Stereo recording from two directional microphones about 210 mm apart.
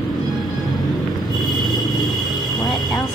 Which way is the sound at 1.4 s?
Centre (ahead or behind).